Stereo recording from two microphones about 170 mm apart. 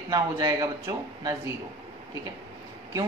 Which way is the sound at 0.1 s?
20° right (ahead or behind).